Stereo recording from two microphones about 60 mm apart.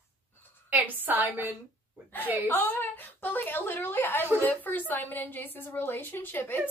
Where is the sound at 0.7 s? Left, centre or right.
Right.